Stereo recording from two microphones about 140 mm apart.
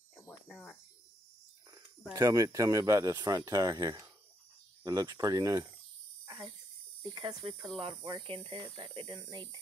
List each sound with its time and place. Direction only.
0.1 s cricket: centre (ahead or behind)
2.1 s speech: 20° right (ahead or behind)
7.0 s speech: 30° right (ahead or behind)
7.7 s speech: 40° right (ahead or behind)